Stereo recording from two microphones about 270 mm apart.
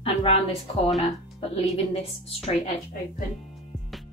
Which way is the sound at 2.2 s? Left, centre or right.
Left.